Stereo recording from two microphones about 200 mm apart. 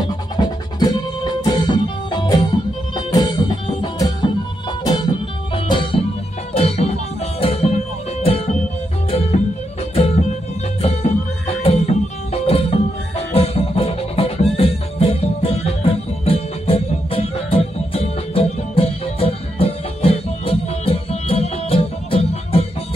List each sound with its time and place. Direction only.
0.0 s music: 20° left (ahead or behind)
10.8 s music: 30° left (ahead or behind)